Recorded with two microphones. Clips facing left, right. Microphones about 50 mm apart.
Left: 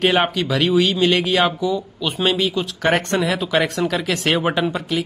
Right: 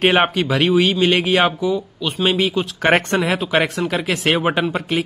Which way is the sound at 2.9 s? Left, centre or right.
Right.